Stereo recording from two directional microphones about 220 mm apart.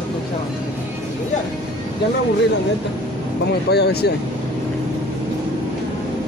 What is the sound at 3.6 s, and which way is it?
Speech, 50° left (ahead or behind).